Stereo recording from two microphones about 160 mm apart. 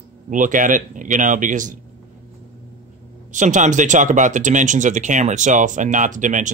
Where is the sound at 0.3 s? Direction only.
55° right (ahead or behind).